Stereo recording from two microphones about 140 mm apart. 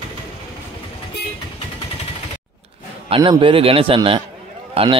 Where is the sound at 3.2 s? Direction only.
40° right (ahead or behind).